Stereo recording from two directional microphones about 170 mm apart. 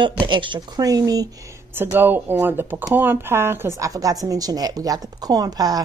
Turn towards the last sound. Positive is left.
turn(degrees=-20)  # may be behind; listen again after turning